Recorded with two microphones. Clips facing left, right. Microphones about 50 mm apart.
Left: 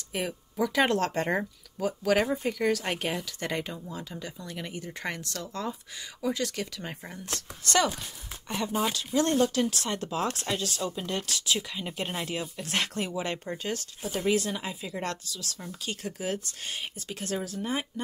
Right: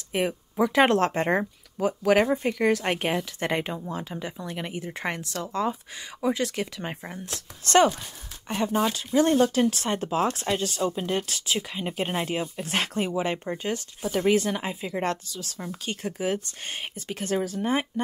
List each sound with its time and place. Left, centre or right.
0.1 s speech: right
2.4 s speech: right
7.6 s speech: right
8.9 s speech: right
14.2 s speech: right